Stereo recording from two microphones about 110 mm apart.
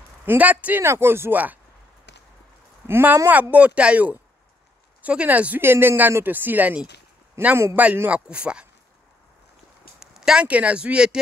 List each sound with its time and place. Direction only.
0.2 s speech: 15° right (ahead or behind)
2.9 s speech: 20° right (ahead or behind)
9.9 s speech: 5° right (ahead or behind)